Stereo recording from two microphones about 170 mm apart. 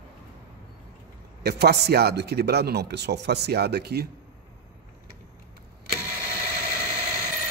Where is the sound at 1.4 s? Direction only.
70° right (ahead or behind).